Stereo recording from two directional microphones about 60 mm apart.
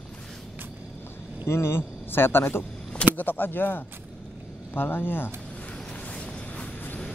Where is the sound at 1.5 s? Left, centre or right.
Left.